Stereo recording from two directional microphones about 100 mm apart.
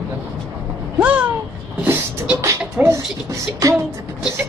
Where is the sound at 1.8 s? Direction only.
15° right (ahead or behind).